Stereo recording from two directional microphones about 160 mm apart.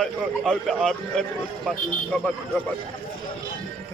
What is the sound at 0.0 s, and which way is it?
A man's voice, centre (ahead or behind).